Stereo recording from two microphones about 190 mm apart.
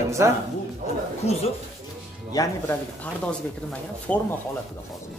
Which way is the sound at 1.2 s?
35° left (ahead or behind).